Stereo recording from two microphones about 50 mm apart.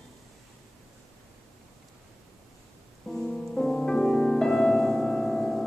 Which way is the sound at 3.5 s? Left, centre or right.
Centre.